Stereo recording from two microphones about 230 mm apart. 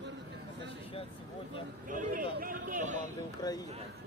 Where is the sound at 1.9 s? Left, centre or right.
Right.